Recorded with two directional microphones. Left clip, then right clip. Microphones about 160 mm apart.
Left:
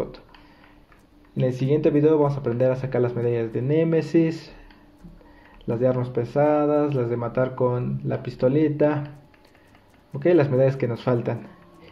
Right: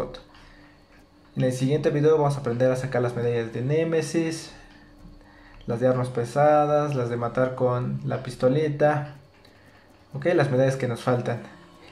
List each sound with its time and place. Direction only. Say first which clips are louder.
1.3 s speech: left 2 dB; 35° left (ahead or behind)
5.7 s speech: even; 35° left (ahead or behind)
10.1 s speech: left 3 dB; 35° left (ahead or behind)